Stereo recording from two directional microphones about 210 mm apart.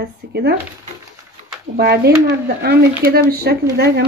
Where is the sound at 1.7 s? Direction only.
50° right (ahead or behind).